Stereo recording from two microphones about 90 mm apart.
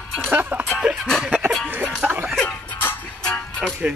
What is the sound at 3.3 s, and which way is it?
Music, 5° left (ahead or behind).